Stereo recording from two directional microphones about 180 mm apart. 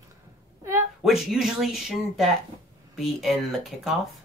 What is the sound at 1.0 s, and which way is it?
Speech, 5° right (ahead or behind).